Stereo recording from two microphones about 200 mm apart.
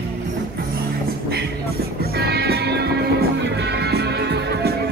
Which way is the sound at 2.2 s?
55° right (ahead or behind).